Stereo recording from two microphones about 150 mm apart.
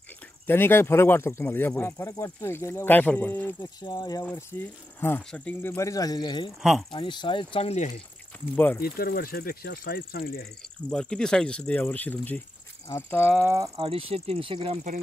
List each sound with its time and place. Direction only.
0.5 s speech: 15° left (ahead or behind)
3.8 s speech: 30° left (ahead or behind)
5.0 s speech: 10° left (ahead or behind); by 8.0 s 50° left (ahead or behind)
8.5 s speech: 10° left (ahead or behind)
8.8 s speech: 90° left
10.6 s speech: 5° left (ahead or behind)
13.4 s speech: 20° right (ahead or behind)
13.8 s speech: 40° right (ahead or behind)